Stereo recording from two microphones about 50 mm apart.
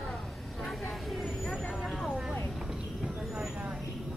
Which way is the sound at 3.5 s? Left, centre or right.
Centre.